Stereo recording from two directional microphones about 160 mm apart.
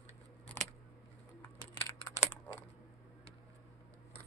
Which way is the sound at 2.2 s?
10° left (ahead or behind).